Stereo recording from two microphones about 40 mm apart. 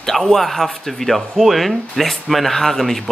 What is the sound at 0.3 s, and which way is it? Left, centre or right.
Speech, centre.